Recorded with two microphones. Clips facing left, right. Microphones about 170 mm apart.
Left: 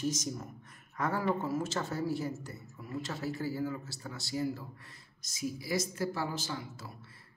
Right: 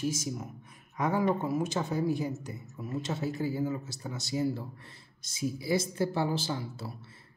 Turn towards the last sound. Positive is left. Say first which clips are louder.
# right 5 dB
turn(degrees=-30)  # may be behind; listen again after turning